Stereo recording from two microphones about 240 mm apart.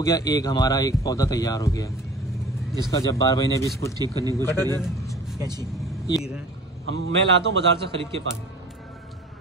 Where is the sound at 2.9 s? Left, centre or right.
Centre.